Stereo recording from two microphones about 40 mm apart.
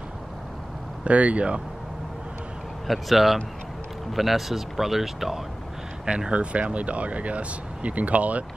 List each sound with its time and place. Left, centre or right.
1.0 s speech: right
2.9 s speech: centre
6.0 s speech: right